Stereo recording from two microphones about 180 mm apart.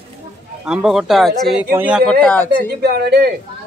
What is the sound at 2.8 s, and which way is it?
Speech, 60° right (ahead or behind).